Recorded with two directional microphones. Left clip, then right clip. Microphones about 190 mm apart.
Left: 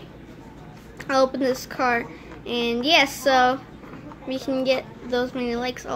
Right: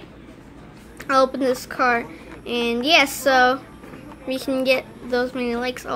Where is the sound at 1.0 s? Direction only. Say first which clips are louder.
Right 2 dB; 5° right (ahead or behind).